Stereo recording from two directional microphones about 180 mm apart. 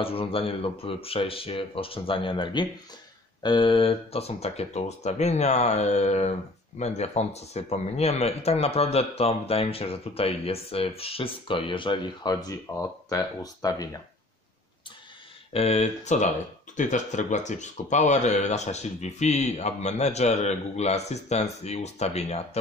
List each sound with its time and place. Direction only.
0.0 s speech: 30° left (ahead or behind)
15.5 s speech: 35° left (ahead or behind)